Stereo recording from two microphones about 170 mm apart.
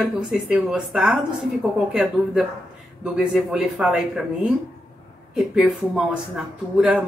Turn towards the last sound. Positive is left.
turn(degrees=-5)  # may be behind; listen again after turning